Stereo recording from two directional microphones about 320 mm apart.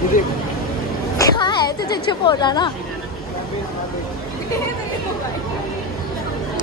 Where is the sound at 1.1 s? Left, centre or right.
Centre.